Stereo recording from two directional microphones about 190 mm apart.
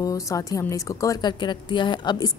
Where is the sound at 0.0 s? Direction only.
15° left (ahead or behind).